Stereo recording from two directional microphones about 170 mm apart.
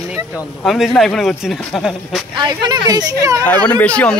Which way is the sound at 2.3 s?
25° right (ahead or behind).